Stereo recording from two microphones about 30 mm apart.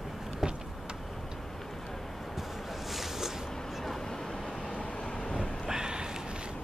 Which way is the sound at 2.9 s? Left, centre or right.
Centre.